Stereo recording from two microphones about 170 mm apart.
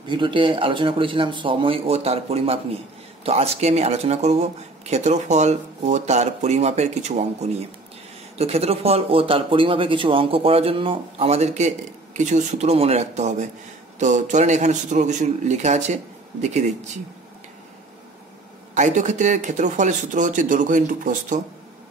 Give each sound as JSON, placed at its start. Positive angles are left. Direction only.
{"t": 0.1, "sound": "a man's voice", "side_deg": -30}
{"t": 18.8, "sound": "a man's voice", "side_deg": -45}